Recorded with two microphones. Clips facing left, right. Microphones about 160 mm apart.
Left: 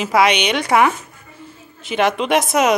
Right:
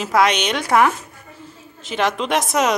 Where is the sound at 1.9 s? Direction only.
5° left (ahead or behind).